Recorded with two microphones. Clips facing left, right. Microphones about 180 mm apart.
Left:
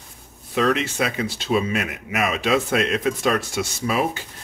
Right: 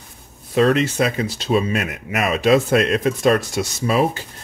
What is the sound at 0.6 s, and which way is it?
Speech, 40° right (ahead or behind).